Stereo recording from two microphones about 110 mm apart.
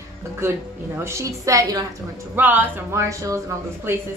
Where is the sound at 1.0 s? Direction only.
25° right (ahead or behind).